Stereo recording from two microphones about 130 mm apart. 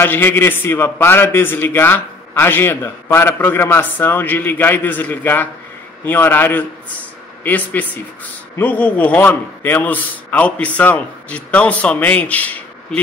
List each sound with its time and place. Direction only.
0.0 s a man's voice: 15° left (ahead or behind)